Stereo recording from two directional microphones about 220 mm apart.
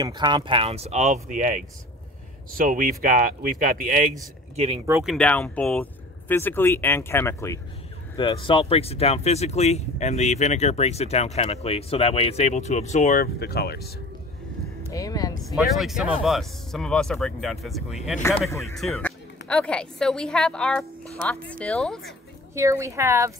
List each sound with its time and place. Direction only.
0.0 s speech: 20° right (ahead or behind); by 4.1 s 40° right (ahead or behind)
4.6 s speech: 25° right (ahead or behind)
5.0 s speech: 5° left (ahead or behind); by 13.7 s 45° left (ahead or behind)
14.9 s speech: 15° left (ahead or behind)
15.4 s a woman's voice: centre (ahead or behind)
22.5 s speech: 15° right (ahead or behind)